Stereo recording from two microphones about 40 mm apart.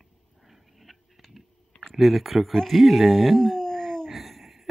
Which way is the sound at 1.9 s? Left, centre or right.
Centre.